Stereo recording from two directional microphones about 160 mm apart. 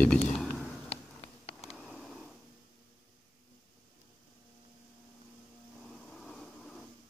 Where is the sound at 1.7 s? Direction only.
Centre (ahead or behind).